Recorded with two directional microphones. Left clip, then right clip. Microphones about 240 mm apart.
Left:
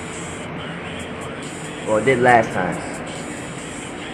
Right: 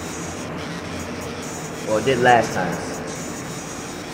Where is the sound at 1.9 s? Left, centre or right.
Centre.